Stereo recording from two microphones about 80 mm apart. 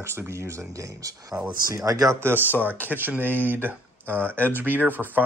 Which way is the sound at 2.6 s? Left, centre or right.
Right.